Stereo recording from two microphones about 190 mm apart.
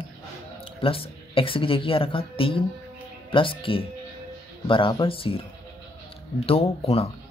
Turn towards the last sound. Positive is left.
turn(degrees=30)  # may be behind; listen again after turning